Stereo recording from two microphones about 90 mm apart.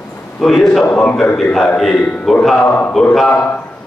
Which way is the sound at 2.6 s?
20° left (ahead or behind).